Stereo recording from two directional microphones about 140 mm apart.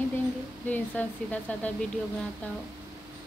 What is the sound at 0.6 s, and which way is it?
Speech, 10° left (ahead or behind).